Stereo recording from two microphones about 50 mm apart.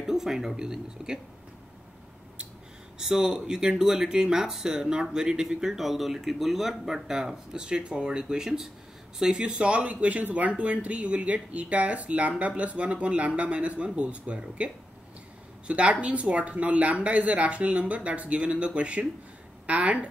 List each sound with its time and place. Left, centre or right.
0.0 s speech: centre
3.0 s a woman's voice: centre; by 20.1 s right